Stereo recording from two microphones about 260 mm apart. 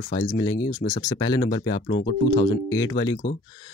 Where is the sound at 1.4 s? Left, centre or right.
Left.